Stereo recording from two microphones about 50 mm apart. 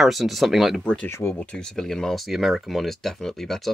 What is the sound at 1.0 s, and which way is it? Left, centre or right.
Speech, left.